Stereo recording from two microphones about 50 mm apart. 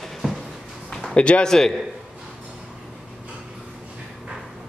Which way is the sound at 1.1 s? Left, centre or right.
Left.